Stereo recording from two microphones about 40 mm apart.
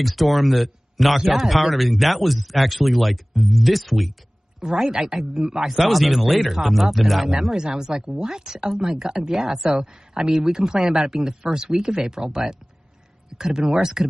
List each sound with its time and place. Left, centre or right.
0.0 s a man's voice: centre
4.6 s speech: centre
5.7 s a man's voice: centre